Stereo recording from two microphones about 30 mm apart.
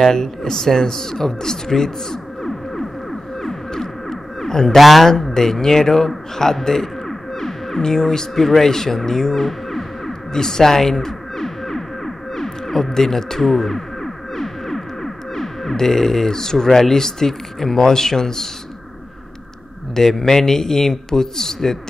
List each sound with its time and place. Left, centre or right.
0.0 s speech: centre
2.4 s music: centre
3.7 s music: centre
4.7 s speech: centre
5.1 s a man's voice: centre
9.4 s music: centre
10.3 s music: centre
20.0 s speech: centre